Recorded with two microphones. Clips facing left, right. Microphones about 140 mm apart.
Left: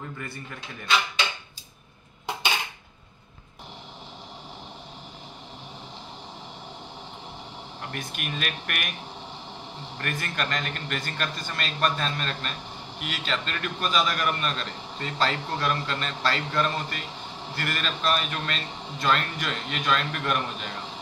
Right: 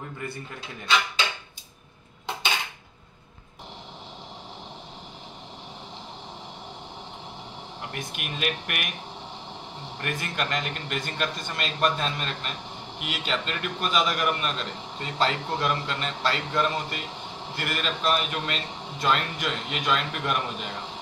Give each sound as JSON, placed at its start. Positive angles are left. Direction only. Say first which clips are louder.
{"t": 7.9, "sound": "a man's voice", "louder": "left 2 dB", "side_deg": -15}
{"t": 9.9, "sound": "a man's voice", "louder": "right 1 dB", "side_deg": -15}